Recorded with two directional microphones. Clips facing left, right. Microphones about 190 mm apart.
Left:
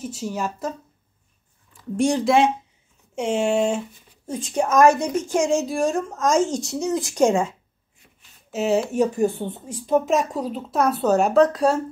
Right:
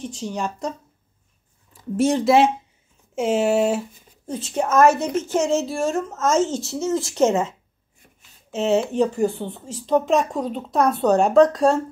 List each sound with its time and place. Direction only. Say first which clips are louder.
0.0 s speech: even; 5° left (ahead or behind)
4.6 s a woman's voice: even; 10° left (ahead or behind)
5.7 s speech: left 1 dB; centre (ahead or behind)
6.1 s a woman's voice: even; 15° left (ahead or behind)
6.4 s speech: even; 5° right (ahead or behind)
7.2 s a woman's voice: left 1 dB; 10° left (ahead or behind)
8.5 s a woman's voice: right 1 dB; centre (ahead or behind); by 9.8 s 20° left (ahead or behind)
9.8 s speech: right 1 dB; 5° left (ahead or behind)